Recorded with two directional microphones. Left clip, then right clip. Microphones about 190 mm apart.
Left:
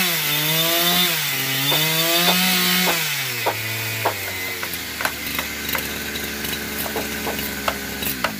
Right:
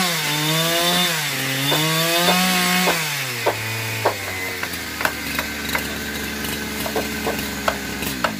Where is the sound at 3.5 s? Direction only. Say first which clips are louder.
Right 3 dB; 25° left (ahead or behind).